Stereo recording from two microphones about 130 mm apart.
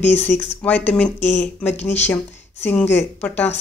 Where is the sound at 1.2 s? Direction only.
60° left (ahead or behind).